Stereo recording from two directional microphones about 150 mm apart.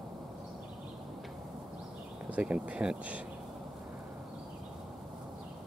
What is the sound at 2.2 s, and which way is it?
Speech, 10° right (ahead or behind).